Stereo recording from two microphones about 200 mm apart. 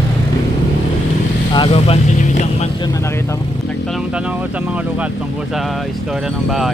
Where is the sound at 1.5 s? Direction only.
25° left (ahead or behind).